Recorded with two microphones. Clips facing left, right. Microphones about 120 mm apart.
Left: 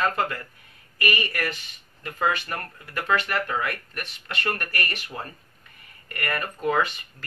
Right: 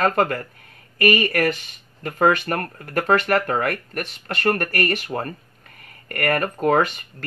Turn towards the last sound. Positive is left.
turn(degrees=-50)  # may be behind; listen again after turning